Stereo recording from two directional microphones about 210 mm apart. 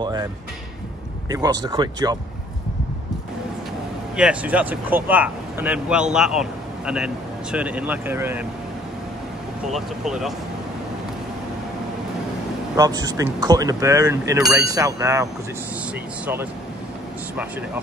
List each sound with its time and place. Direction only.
0.0 s speech: 20° right (ahead or behind)
1.3 s speech: 15° right (ahead or behind)
4.2 s speech: 5° right (ahead or behind)
9.7 s speech: centre (ahead or behind)
12.7 s speech: 20° right (ahead or behind)